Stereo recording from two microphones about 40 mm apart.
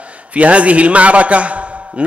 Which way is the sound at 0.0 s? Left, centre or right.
Right.